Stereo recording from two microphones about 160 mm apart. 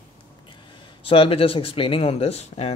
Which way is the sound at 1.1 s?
35° left (ahead or behind).